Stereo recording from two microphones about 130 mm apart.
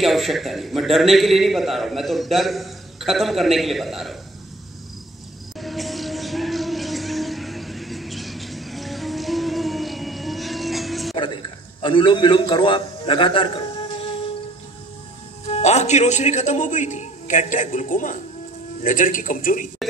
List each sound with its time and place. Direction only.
0.0 s a man's voice: centre (ahead or behind)
5.6 s a sound: centre (ahead or behind)
11.8 s a man's voice: 40° left (ahead or behind)
15.4 s a man's voice: 60° left (ahead or behind); by 19.7 s 90° left